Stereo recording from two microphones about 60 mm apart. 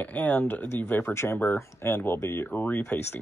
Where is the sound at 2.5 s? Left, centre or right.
Left.